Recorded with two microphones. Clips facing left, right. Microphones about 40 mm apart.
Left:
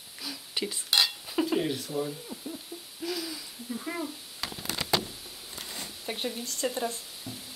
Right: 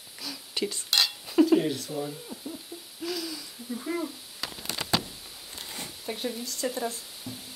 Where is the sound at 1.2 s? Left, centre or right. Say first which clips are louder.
Right 6 dB; centre.